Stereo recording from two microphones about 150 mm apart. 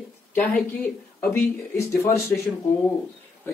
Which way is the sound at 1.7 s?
20° left (ahead or behind).